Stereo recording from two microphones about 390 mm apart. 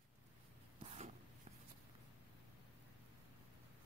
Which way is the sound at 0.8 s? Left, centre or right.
Centre.